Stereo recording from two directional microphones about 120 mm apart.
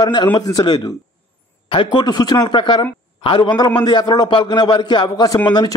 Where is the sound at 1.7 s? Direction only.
45° left (ahead or behind).